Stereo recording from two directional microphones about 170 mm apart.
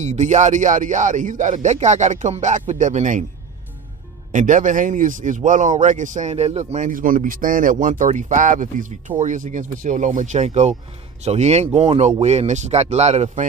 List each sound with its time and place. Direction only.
0.0 s a man's voice: 45° right (ahead or behind)
4.3 s a man's voice: 45° right (ahead or behind)